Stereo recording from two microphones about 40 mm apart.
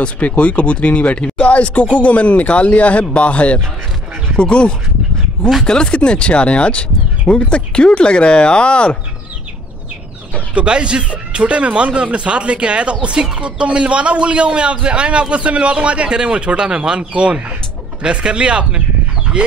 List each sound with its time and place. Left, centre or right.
0.0 s speech: left
10.5 s speech: right